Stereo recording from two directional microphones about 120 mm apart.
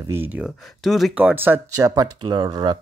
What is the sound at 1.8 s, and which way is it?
Speech, 30° right (ahead or behind).